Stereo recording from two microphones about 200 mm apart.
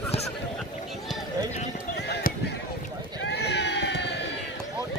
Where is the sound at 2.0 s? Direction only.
55° left (ahead or behind).